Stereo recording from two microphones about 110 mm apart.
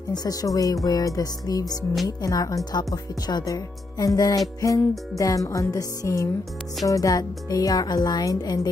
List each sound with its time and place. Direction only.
0.1 s speech: 35° left (ahead or behind)